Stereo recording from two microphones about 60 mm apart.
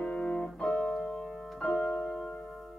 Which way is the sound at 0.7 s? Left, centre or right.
Left.